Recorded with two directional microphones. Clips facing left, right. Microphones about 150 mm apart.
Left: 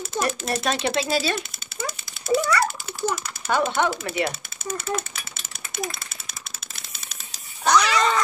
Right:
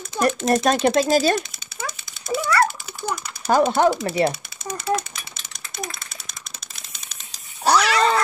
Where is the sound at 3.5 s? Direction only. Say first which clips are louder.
Right 5 dB; 35° right (ahead or behind).